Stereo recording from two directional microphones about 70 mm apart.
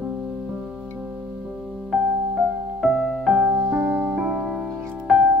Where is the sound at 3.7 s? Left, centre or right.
Right.